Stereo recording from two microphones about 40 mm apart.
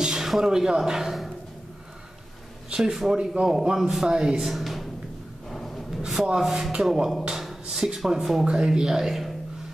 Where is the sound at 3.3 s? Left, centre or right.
Centre.